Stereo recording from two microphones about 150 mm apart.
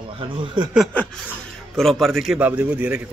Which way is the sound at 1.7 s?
5° left (ahead or behind).